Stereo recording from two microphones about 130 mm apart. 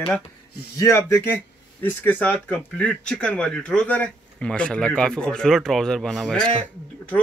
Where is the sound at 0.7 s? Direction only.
25° left (ahead or behind).